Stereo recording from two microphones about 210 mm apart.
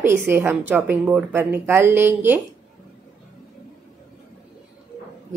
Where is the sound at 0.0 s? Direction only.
10° right (ahead or behind).